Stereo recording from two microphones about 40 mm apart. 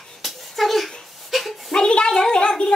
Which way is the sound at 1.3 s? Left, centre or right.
Centre.